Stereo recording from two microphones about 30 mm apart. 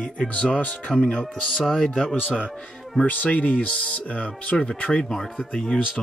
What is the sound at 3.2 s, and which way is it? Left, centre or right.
Speech, left.